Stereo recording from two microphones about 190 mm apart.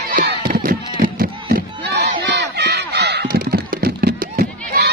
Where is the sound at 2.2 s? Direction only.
60° right (ahead or behind).